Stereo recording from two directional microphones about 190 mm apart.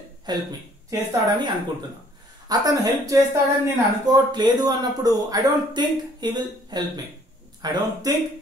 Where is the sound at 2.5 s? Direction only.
20° right (ahead or behind).